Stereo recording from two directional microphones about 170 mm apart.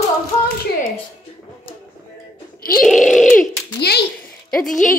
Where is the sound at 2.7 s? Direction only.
Centre (ahead or behind).